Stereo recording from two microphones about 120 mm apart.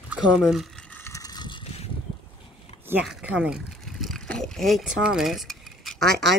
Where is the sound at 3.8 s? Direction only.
Centre (ahead or behind).